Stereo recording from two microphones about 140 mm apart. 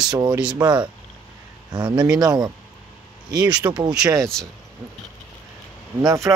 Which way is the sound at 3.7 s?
30° right (ahead or behind).